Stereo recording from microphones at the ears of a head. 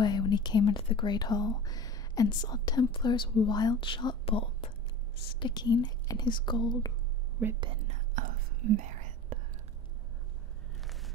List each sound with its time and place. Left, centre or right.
0.0 s speech: left
7.6 s whispering: right